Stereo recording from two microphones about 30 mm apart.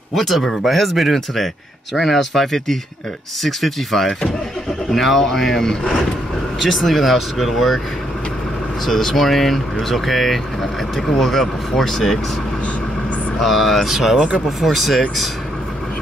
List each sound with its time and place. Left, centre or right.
0.1 s speech: centre
8.8 s speech: centre
13.4 s speech: centre
13.8 s speech: centre